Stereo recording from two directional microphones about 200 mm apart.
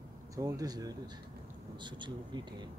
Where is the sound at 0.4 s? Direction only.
15° right (ahead or behind).